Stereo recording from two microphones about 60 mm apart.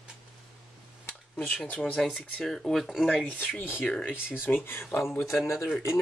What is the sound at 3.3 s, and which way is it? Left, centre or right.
Speech, left.